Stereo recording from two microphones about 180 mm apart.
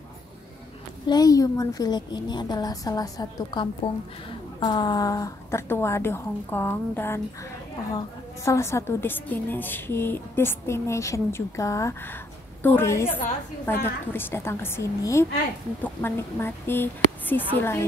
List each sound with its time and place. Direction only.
1.0 s a woman's voice: 20° left (ahead or behind)
8.5 s a woman's voice: 15° left (ahead or behind)